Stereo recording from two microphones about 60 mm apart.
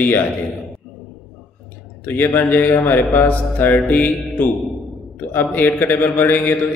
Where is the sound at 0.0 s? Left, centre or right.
Left.